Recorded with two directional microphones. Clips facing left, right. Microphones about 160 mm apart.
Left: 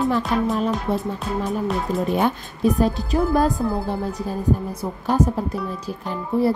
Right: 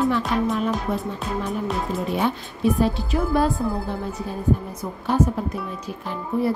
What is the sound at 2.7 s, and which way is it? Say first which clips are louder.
Speech: left 2 dB; 40° left (ahead or behind).